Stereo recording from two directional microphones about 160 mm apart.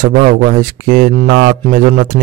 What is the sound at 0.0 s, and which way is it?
Speech, 65° right (ahead or behind).